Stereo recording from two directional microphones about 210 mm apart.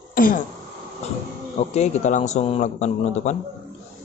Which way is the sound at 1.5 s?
35° left (ahead or behind).